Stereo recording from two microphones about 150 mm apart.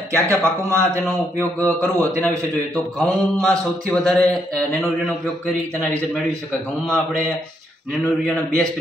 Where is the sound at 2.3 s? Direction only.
20° right (ahead or behind).